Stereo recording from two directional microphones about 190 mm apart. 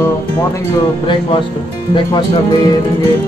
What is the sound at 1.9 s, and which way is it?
Speech, 25° left (ahead or behind).